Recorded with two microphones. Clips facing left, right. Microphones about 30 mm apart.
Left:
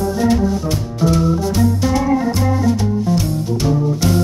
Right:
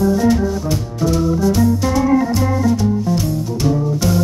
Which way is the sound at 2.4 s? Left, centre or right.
Centre.